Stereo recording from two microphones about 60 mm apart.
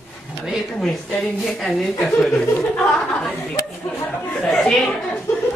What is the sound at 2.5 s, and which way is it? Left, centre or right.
Speech, centre.